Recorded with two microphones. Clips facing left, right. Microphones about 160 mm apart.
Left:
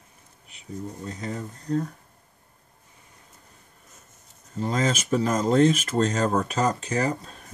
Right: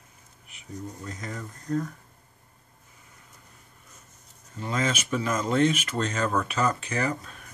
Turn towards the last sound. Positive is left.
turn(degrees=35)  # may be behind; listen again after turning